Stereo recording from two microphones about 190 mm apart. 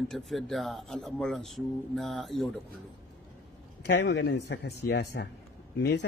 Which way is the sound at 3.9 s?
65° left (ahead or behind).